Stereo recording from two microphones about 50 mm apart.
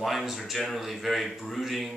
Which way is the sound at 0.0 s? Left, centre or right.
Centre.